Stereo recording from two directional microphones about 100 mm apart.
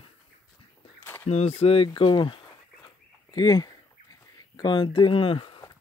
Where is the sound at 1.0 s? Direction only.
20° left (ahead or behind).